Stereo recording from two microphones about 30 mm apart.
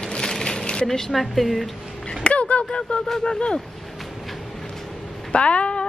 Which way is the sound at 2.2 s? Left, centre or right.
Left.